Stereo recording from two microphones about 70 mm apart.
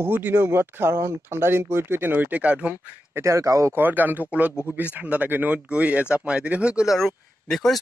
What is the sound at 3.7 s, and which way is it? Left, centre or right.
Speech, right.